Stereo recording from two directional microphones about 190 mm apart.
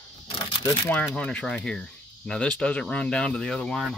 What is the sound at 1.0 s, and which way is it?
Speech, 5° left (ahead or behind).